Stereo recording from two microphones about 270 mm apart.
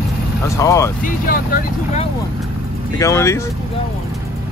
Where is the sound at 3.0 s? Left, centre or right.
Centre.